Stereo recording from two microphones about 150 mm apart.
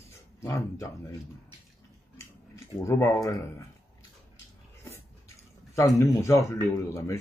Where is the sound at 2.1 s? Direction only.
20° left (ahead or behind).